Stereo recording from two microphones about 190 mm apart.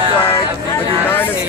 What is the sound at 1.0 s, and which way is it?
Speech, 10° left (ahead or behind).